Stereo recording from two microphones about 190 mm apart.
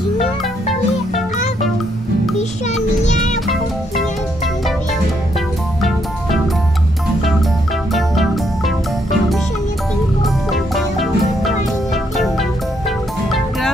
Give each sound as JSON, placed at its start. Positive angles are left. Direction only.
{"t": 2.3, "sound": "a sound", "side_deg": 40}
{"t": 5.8, "sound": "music", "side_deg": 0}
{"t": 7.9, "sound": "music", "side_deg": 0}
{"t": 10.2, "sound": "music", "side_deg": 0}